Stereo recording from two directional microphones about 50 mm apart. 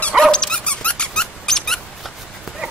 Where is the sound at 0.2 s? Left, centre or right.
Centre.